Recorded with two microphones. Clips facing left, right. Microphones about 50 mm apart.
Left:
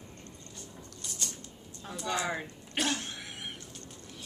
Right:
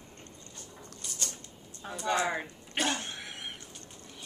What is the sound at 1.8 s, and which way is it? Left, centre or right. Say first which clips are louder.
Speech: right 4 dB; centre.